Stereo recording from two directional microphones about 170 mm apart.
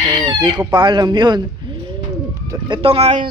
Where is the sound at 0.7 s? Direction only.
25° right (ahead or behind).